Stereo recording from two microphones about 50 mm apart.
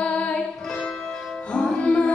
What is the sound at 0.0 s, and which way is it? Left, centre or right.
Music, left.